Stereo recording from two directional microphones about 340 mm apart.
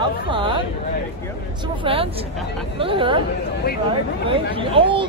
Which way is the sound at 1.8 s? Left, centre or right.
Centre.